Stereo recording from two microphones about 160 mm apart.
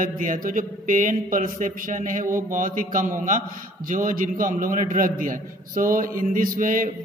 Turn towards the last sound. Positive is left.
turn(degrees=-60)  # may be behind; listen again after turning